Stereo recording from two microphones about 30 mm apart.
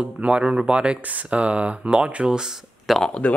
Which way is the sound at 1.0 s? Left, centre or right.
Right.